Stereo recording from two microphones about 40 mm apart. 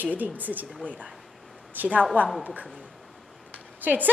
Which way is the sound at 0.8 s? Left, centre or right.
Left.